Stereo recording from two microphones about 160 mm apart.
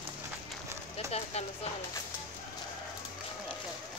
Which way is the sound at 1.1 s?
40° left (ahead or behind).